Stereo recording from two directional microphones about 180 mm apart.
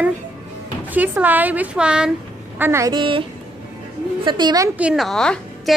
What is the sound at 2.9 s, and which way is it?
A woman's voice, 30° right (ahead or behind).